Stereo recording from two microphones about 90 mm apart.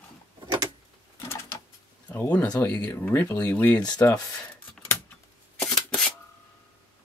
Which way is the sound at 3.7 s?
50° left (ahead or behind).